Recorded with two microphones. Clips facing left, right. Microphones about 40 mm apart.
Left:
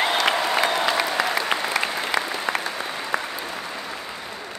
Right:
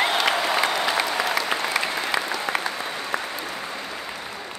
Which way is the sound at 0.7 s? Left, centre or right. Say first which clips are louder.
Left 2 dB; left.